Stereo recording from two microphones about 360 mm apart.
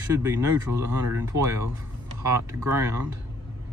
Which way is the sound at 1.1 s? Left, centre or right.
Centre.